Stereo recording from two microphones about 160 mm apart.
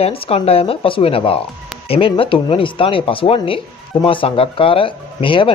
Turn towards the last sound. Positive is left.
turn(degrees=35)  # may be behind; listen again after turning